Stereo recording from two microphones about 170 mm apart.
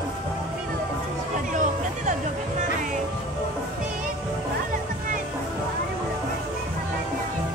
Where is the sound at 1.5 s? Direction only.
45° right (ahead or behind).